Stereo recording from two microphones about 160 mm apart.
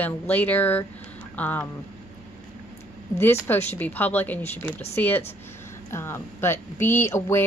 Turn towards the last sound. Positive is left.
turn(degrees=15)  # may be behind; listen again after turning